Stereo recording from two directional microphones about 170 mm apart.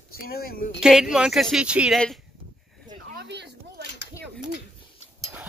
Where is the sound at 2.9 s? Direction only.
60° right (ahead or behind); by 3.8 s 90° right.